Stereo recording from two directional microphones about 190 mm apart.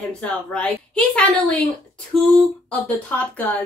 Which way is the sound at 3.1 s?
10° left (ahead or behind).